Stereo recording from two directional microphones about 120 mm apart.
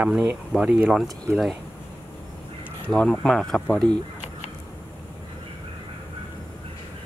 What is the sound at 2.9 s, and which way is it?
Speech, 10° left (ahead or behind).